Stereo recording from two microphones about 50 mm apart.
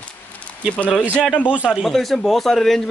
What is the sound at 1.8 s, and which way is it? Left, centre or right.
Speech, centre.